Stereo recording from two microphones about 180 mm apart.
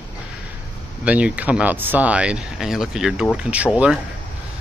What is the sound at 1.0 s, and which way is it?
Speech, 10° right (ahead or behind).